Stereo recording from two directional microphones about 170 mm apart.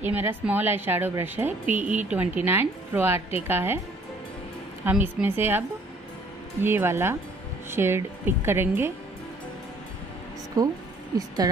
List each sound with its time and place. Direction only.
0.0 s a woman's voice: 10° right (ahead or behind)
1.8 s speech: 45° right (ahead or behind)
2.0 s a woman's voice: 10° right (ahead or behind)
4.8 s a woman's voice: 10° right (ahead or behind)
6.6 s a woman's voice: 15° right (ahead or behind)
10.6 s a woman's voice: 20° right (ahead or behind)